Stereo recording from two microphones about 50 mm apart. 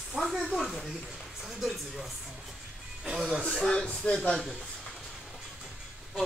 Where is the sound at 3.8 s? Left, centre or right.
Centre.